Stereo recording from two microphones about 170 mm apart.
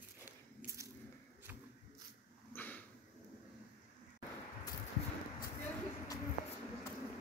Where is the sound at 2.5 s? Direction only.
10° left (ahead or behind).